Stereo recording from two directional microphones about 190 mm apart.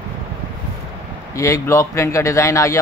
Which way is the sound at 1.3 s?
15° left (ahead or behind).